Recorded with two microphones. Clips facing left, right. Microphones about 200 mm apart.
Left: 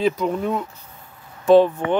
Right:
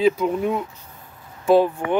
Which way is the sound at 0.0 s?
10° right (ahead or behind).